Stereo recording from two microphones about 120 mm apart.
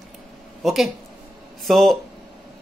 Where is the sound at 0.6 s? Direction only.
Centre (ahead or behind).